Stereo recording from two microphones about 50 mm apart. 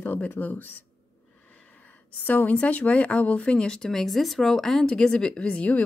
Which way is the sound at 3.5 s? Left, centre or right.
Centre.